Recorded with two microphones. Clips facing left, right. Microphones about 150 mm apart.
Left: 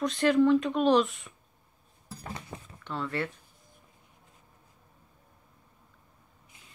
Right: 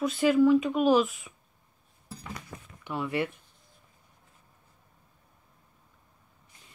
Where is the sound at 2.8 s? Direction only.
10° right (ahead or behind).